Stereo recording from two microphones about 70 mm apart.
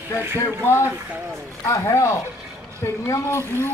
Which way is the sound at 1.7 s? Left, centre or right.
Left.